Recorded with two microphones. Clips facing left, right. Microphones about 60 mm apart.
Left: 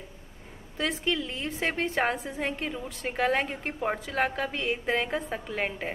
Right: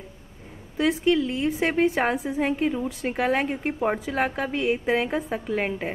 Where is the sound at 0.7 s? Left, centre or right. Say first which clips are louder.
Right 8 dB; centre.